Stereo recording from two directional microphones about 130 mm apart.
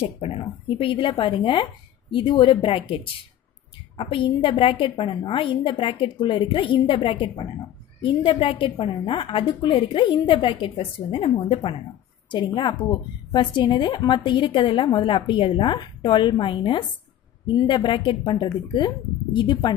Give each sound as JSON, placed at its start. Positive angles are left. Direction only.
{"t": 0.0, "sound": "a woman's voice", "side_deg": 50}